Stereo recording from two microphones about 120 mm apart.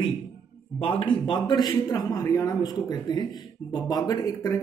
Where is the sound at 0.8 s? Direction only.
45° left (ahead or behind).